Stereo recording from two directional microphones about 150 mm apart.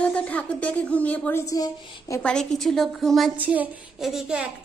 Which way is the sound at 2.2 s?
5° left (ahead or behind).